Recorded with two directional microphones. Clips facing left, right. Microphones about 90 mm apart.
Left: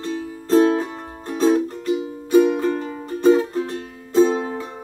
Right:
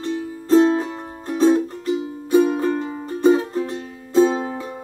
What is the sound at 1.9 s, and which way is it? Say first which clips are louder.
Music: left 1 dB; 20° right (ahead or behind).